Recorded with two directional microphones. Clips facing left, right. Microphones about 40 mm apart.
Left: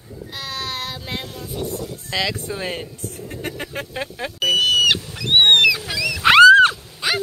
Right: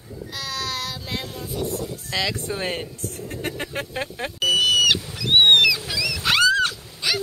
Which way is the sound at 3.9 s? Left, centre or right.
Centre.